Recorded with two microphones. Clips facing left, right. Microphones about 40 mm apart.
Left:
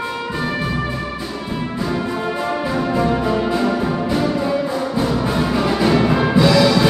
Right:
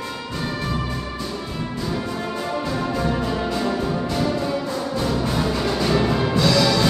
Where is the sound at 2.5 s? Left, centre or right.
Left.